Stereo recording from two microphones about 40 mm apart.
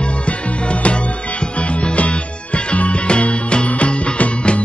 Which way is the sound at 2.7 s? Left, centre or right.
Left.